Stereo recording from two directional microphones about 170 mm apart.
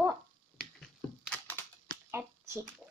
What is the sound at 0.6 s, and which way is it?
Crushing, centre (ahead or behind).